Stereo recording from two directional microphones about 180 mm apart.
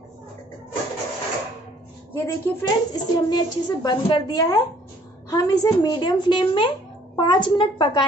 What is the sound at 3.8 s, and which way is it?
A woman's voice, 25° left (ahead or behind).